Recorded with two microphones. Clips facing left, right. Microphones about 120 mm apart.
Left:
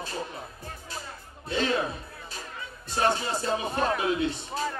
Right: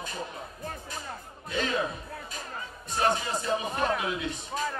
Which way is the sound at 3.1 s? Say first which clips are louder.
Even; 30° left (ahead or behind).